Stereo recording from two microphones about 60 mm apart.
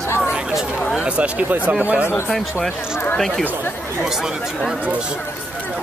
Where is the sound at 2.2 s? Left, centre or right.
Centre.